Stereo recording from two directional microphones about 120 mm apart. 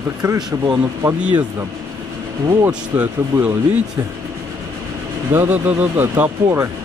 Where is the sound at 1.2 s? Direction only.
15° right (ahead or behind).